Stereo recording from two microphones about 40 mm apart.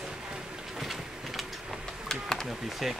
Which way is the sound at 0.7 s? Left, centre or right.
Centre.